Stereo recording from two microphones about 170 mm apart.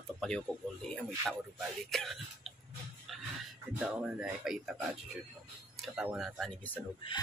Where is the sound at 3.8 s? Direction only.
5° right (ahead or behind).